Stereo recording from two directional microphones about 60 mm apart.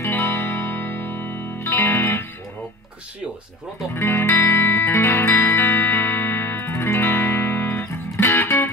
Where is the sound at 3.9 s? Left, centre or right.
Left.